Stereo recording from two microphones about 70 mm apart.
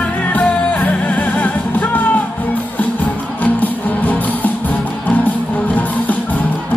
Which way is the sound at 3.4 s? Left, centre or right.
Left.